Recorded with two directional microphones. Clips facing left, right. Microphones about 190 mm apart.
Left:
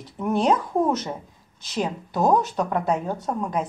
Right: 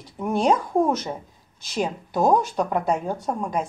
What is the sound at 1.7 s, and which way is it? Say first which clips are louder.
Speech: right 1 dB; 10° right (ahead or behind).